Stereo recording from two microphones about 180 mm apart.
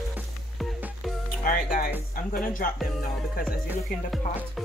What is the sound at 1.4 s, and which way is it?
Speech, 50° left (ahead or behind).